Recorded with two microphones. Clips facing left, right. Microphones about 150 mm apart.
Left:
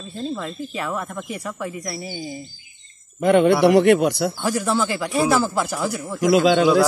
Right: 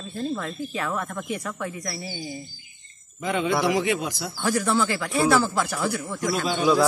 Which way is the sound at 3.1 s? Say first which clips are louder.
Left 9 dB; 65° left (ahead or behind).